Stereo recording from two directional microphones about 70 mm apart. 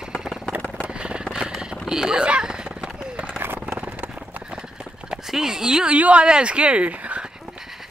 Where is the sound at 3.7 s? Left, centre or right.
Centre.